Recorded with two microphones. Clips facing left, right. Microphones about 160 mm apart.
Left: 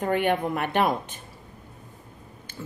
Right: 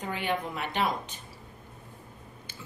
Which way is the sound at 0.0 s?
55° left (ahead or behind).